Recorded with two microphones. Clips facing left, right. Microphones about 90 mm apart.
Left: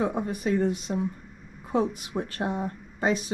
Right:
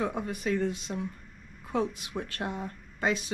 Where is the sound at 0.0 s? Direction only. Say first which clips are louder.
Left 4 dB; 40° left (ahead or behind).